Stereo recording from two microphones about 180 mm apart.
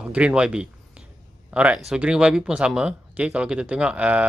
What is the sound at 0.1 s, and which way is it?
Speech, 5° right (ahead or behind).